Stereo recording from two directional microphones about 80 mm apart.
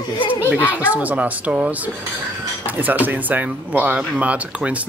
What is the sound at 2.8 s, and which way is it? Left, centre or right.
Speech, right.